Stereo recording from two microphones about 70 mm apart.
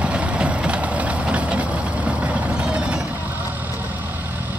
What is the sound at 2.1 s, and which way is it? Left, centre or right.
Vehicle, right.